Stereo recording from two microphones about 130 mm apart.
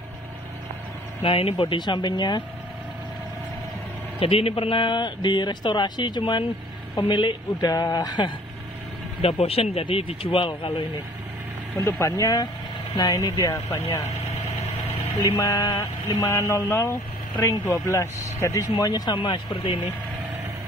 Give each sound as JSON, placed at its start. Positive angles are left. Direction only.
{"t": 1.2, "sound": "a man's voice", "side_deg": 45}
{"t": 4.2, "sound": "a man's voice", "side_deg": 45}
{"t": 9.2, "sound": "speech", "side_deg": 45}
{"t": 12.0, "sound": "speech", "side_deg": 30}
{"t": 15.2, "sound": "a man's voice", "side_deg": 25}